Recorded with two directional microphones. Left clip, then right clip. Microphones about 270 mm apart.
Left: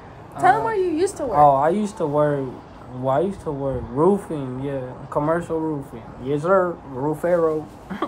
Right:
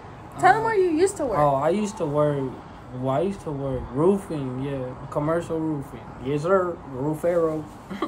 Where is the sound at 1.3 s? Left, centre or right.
Centre.